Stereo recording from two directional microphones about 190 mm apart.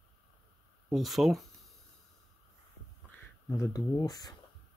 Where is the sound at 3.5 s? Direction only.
15° left (ahead or behind).